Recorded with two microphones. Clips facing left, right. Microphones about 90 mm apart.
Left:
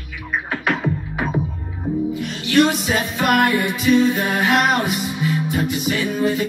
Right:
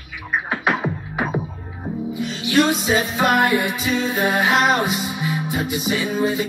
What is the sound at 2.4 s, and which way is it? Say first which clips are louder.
Music: left 1 dB; 5° right (ahead or behind).